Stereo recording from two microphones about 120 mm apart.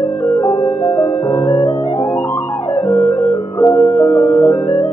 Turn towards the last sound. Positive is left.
turn(degrees=20)  # may be behind; listen again after turning